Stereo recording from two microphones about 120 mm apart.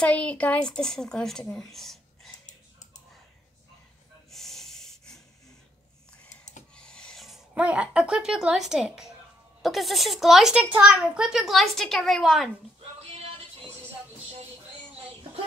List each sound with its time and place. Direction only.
0.0 s a woman's voice: 10° left (ahead or behind)
4.3 s snort: centre (ahead or behind)
6.8 s filing: 5° left (ahead or behind)
7.5 s a woman's voice: 10° right (ahead or behind)